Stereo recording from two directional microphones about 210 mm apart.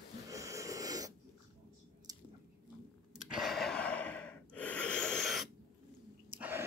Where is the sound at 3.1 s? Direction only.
5° right (ahead or behind).